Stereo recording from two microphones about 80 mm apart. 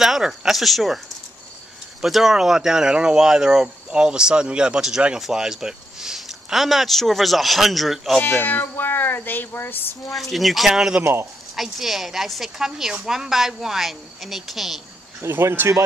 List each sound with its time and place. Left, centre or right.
0.0 s speech: centre
8.2 s speech: left
10.3 s a woman's voice: centre
15.2 s speech: right